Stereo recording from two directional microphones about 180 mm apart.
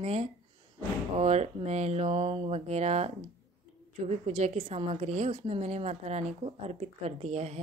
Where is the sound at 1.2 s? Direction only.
40° right (ahead or behind).